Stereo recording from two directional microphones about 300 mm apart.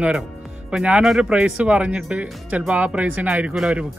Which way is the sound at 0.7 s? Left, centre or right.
Centre.